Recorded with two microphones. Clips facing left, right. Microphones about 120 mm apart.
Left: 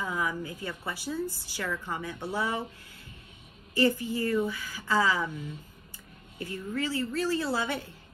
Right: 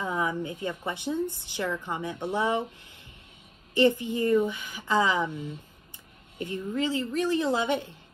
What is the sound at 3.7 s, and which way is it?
Speech, 20° right (ahead or behind).